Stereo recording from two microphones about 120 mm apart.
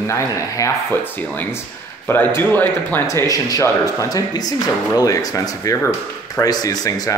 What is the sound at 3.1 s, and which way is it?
Speech, 30° left (ahead or behind).